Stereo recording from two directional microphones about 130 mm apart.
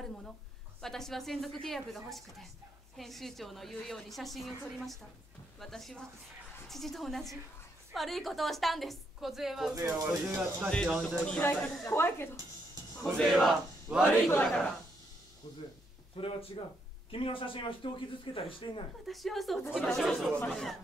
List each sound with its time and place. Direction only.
0.7 s a woman's voice: 5° left (ahead or behind)
9.8 s speech: 15° right (ahead or behind)
10.7 s speech: 5° left (ahead or behind)
11.8 s speech: 20° left (ahead or behind)
13.0 s a woman's voice: centre (ahead or behind)
13.9 s speech: 10° right (ahead or behind)
14.4 s a woman's voice: 5° left (ahead or behind)
16.2 s speech: 50° left (ahead or behind)
19.0 s a woman's voice: centre (ahead or behind)